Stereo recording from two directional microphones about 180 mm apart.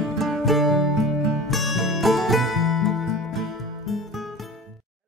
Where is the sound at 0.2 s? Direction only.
Centre (ahead or behind).